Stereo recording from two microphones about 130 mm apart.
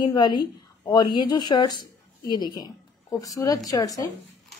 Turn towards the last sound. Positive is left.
turn(degrees=25)  # may be behind; listen again after turning